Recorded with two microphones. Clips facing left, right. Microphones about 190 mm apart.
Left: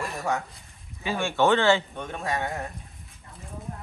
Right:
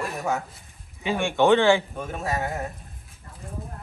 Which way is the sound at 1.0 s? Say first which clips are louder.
Right 3 dB; 15° right (ahead or behind).